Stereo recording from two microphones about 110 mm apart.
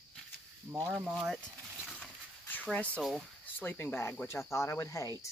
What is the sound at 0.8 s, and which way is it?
Speech, 15° right (ahead or behind).